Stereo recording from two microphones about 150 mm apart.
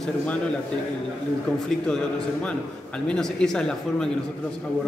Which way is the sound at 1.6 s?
5° left (ahead or behind).